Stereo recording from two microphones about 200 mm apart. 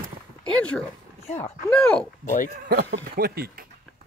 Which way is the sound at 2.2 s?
40° left (ahead or behind).